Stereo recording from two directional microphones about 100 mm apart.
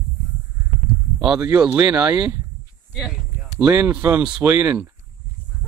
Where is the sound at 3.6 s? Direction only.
15° right (ahead or behind).